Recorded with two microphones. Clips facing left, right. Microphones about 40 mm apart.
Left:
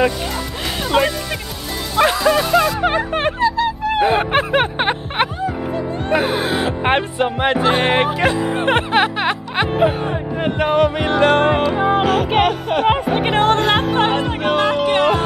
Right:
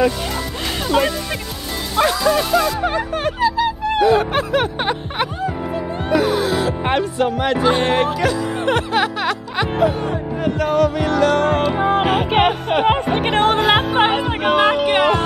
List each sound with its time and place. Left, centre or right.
0.8 s speech: centre
3.1 s a sound: left
3.3 s a sound: centre
4.0 s music: left
11.5 s music: centre
12.0 s music: centre
12.8 s music: centre